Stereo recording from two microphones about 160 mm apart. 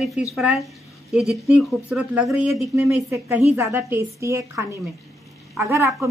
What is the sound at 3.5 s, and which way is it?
A woman's voice, 15° right (ahead or behind).